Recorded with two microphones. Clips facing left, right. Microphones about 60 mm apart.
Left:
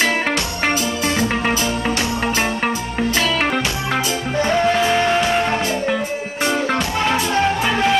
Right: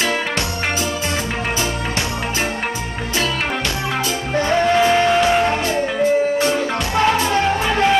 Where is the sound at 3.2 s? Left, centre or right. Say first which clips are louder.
Even; left.